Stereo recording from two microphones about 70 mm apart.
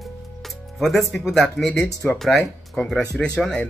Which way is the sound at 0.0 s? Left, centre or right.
Centre.